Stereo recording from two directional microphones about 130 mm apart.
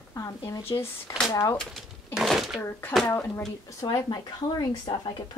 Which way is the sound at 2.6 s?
20° left (ahead or behind).